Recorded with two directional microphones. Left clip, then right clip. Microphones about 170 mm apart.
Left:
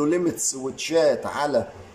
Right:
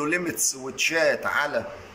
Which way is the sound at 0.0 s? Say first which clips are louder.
Left 3 dB; 30° left (ahead or behind).